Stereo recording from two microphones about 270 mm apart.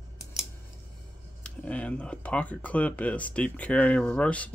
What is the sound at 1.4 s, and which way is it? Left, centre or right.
Speech, centre.